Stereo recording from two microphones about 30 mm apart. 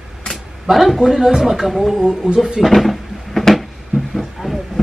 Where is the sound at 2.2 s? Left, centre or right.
Right.